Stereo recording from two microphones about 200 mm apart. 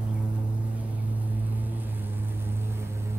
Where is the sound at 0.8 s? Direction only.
10° right (ahead or behind).